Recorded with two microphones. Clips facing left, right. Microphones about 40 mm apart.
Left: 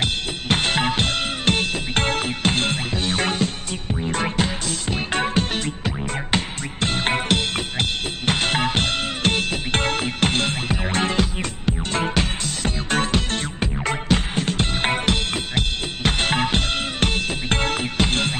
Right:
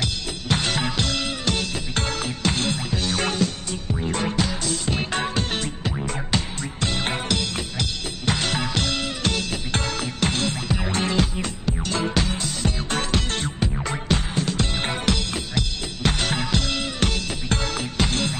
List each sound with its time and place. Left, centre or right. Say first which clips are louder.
0.0 s music: left 4 dB; left